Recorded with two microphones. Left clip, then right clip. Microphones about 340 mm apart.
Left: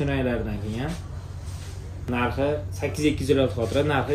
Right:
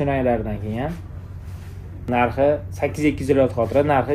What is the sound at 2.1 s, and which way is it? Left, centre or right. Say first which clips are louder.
Speech: right 8 dB; centre.